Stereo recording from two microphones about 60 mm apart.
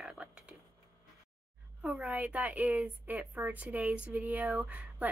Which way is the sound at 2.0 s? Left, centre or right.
Right.